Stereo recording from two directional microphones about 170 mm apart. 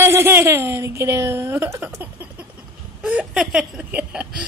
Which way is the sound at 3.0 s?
5° right (ahead or behind).